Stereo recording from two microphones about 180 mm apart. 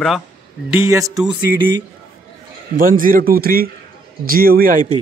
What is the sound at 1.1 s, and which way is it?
Speech, 5° right (ahead or behind).